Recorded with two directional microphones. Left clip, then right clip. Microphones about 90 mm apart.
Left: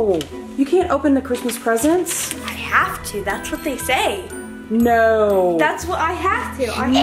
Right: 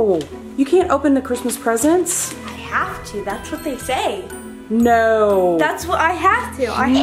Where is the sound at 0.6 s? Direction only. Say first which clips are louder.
Right 2 dB; 20° right (ahead or behind).